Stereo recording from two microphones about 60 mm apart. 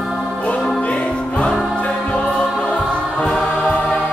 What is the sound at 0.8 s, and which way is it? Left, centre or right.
Music, centre.